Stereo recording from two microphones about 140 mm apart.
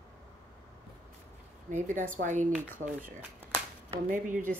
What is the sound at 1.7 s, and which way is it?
Speech, 70° right (ahead or behind).